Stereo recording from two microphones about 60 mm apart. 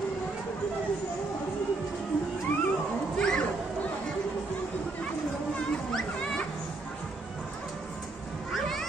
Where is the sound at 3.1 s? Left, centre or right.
Centre.